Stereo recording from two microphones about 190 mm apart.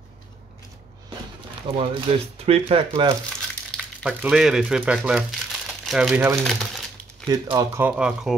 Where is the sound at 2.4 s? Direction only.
30° right (ahead or behind).